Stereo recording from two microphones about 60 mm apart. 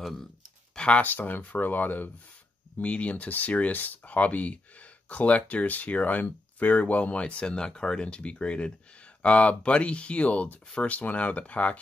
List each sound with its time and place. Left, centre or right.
0.0 s speech: centre
0.7 s speech: left